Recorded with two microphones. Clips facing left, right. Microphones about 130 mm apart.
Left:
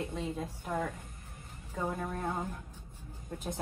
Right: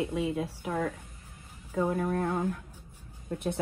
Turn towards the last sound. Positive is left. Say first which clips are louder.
# right 7 dB
turn(degrees=-65)  # may be behind; listen again after turning